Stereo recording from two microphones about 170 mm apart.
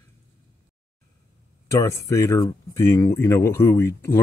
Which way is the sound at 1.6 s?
20° left (ahead or behind).